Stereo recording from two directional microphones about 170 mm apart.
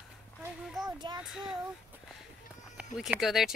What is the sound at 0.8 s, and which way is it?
Speech, 25° right (ahead or behind).